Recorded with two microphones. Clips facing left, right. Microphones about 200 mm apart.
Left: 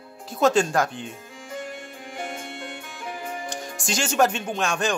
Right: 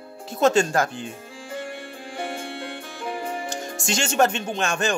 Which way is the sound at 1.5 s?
30° right (ahead or behind).